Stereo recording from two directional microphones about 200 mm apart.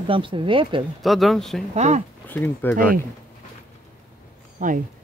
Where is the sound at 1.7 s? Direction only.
35° right (ahead or behind).